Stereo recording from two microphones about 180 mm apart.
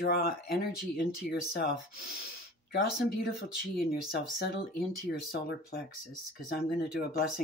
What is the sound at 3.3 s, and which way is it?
Speech, 60° left (ahead or behind).